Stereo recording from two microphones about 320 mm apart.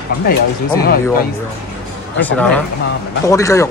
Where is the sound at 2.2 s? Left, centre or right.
Centre.